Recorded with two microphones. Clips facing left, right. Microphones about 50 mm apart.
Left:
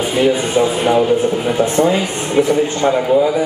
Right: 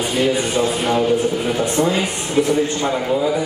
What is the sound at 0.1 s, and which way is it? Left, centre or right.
Speech, centre.